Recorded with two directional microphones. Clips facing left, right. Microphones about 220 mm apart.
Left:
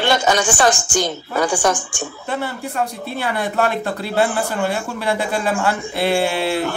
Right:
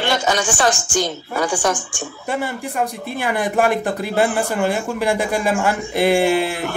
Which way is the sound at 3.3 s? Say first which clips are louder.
Right 3 dB; 15° right (ahead or behind).